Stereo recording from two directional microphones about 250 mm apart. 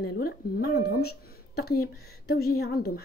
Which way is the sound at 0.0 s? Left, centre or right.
Left.